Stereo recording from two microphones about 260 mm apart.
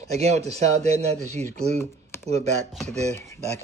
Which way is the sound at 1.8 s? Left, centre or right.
Centre.